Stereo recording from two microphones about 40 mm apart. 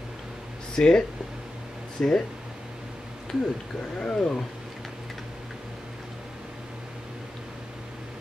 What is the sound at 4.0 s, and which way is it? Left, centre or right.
Speech, left.